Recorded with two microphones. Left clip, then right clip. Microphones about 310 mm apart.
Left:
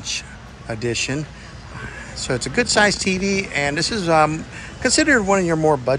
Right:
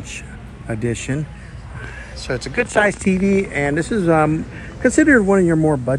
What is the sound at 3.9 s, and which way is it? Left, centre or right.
Speech, right.